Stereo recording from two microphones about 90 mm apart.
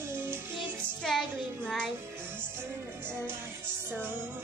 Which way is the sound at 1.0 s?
5° left (ahead or behind).